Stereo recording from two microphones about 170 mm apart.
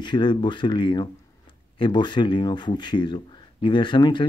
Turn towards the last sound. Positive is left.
turn(degrees=25)  # may be behind; listen again after turning